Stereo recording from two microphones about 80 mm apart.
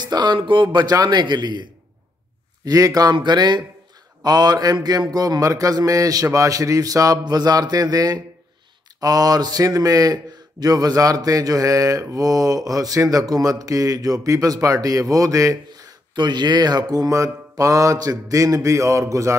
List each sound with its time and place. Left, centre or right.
0.0 s speech: right
0.9 s a man's voice: right
2.6 s speech: right
3.2 s a man's voice: right
16.2 s speech: right